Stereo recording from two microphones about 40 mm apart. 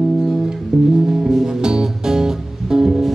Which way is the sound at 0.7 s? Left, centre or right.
Centre.